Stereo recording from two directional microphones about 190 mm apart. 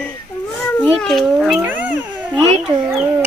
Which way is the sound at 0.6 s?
5° left (ahead or behind).